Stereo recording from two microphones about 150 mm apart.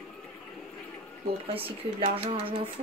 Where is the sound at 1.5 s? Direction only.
40° right (ahead or behind).